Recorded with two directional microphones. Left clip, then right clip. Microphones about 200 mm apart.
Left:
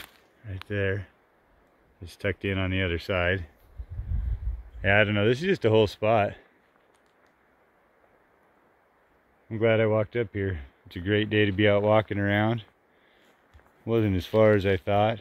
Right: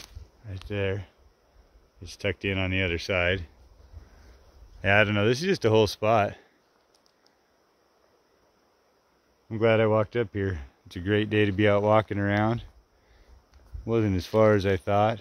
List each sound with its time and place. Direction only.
0.0 s a sound: 5° left (ahead or behind)
2.0 s speech: 5° left (ahead or behind)
4.8 s speech: centre (ahead or behind)
9.5 s speech: 10° right (ahead or behind)
13.8 s speech: centre (ahead or behind)